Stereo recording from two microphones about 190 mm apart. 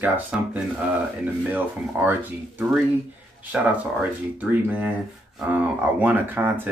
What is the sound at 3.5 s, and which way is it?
Speech, 5° right (ahead or behind).